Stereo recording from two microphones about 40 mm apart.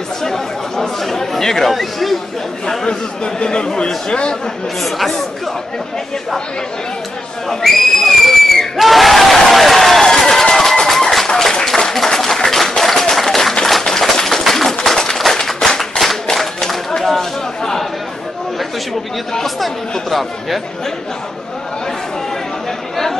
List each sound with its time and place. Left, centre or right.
0.2 s chatter: centre
1.7 s speech: centre
2.6 s speech: centre
4.8 s speech: centre
7.4 s crowd: centre
10.0 s a sound: centre
11.2 s applause: centre
13.7 s a sound: centre
16.3 s chatter: centre
19.4 s chatter: centre